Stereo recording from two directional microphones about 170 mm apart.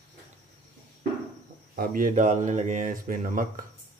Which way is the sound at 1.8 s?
55° right (ahead or behind).